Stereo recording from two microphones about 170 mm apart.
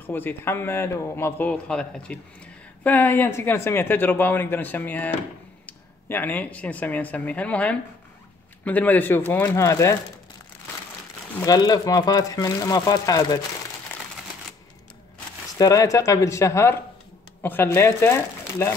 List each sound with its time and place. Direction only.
0.0 s a man's voice: 10° left (ahead or behind)
11.4 s speech: 20° left (ahead or behind)
15.5 s a man's voice: 20° left (ahead or behind)